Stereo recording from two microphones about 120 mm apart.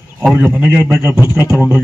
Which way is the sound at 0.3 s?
15° right (ahead or behind).